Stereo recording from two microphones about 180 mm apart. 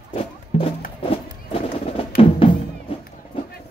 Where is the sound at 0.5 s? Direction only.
40° left (ahead or behind).